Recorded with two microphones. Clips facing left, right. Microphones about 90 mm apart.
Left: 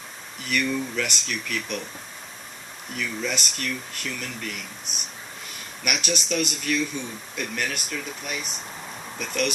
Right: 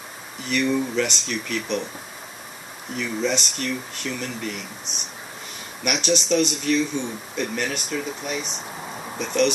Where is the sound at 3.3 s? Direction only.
Centre (ahead or behind).